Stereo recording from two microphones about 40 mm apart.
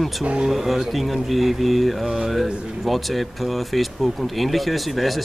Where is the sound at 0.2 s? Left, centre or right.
Right.